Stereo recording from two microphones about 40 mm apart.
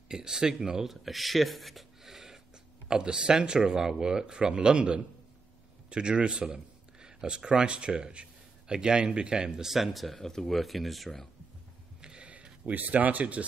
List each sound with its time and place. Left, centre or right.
0.1 s speech: centre
0.8 s speech: centre
2.0 s a sound: centre
2.9 s speech: centre
9.7 s speech: centre
10.0 s speech: centre
12.0 s a sound: right
12.7 s speech: right